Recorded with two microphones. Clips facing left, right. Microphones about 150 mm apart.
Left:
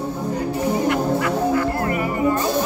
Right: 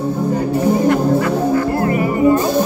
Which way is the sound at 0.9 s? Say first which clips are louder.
Right 5 dB; 35° right (ahead or behind).